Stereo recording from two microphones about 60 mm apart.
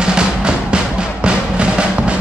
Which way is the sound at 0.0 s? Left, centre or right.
Centre.